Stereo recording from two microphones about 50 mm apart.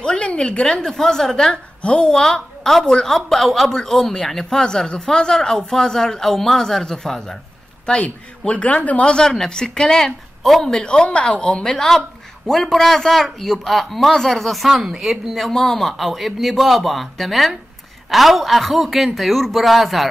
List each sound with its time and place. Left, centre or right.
0.0 s a woman's voice: centre
8.0 s a woman's voice: left
9.0 s a woman's voice: centre
10.7 s a woman's voice: centre
15.3 s speech: centre